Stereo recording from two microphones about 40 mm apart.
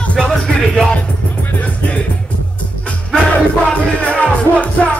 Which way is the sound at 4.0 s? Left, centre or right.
Left.